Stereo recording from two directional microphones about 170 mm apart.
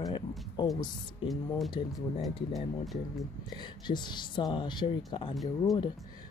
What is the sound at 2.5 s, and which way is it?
Speech, centre (ahead or behind).